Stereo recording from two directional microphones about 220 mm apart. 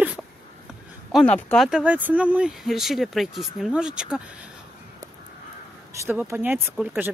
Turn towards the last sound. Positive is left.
turn(degrees=-10)  # may be behind; listen again after turning